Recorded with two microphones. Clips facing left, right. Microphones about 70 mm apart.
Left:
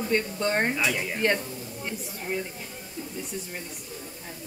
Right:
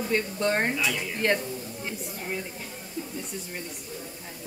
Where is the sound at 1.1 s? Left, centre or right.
Centre.